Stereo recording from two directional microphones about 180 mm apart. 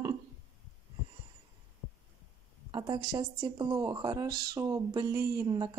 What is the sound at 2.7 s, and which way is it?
Speech, 25° right (ahead or behind).